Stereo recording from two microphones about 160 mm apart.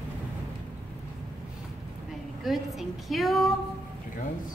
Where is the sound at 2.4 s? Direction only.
Centre (ahead or behind).